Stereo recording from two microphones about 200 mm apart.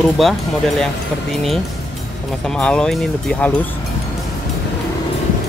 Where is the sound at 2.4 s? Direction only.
5° left (ahead or behind).